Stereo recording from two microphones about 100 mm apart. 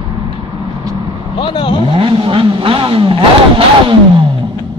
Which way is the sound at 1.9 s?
55° right (ahead or behind).